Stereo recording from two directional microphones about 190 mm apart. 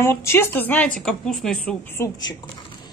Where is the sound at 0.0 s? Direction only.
15° left (ahead or behind).